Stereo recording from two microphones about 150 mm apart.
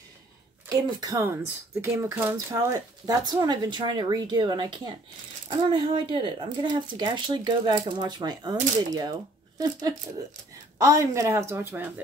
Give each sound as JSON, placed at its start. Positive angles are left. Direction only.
{"t": 0.7, "sound": "speech", "side_deg": -25}